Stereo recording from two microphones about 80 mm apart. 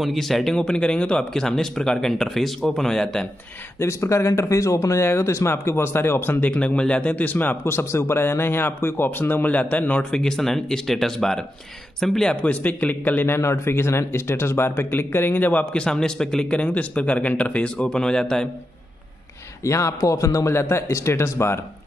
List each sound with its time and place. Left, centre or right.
0.0 s speech: centre
3.8 s speech: left
6.4 s a man's voice: centre
15.7 s speech: centre
19.6 s speech: left